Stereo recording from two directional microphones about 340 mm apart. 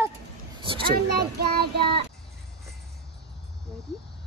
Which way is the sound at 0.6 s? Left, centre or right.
Centre.